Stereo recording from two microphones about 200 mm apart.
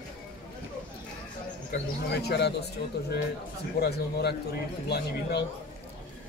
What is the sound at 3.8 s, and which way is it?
Speech, 55° left (ahead or behind).